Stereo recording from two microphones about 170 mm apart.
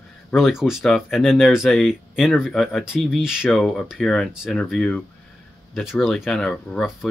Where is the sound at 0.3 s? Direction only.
Centre (ahead or behind).